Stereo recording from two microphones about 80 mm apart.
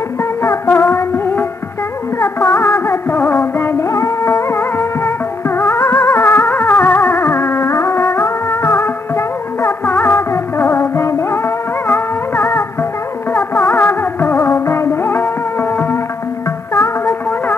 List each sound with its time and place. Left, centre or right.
0.2 s music: left
3.8 s music: left